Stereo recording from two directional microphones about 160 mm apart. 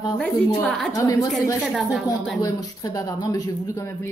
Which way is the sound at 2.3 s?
20° left (ahead or behind).